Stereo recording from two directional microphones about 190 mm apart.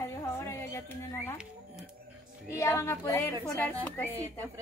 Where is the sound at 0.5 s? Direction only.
10° left (ahead or behind).